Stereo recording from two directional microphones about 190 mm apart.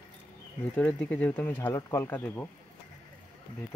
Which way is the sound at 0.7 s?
5° left (ahead or behind).